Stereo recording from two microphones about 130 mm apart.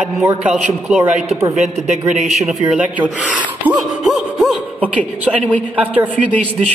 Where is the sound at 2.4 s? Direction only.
5° right (ahead or behind).